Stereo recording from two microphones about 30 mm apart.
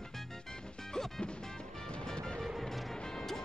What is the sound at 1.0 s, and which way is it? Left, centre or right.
Music, left.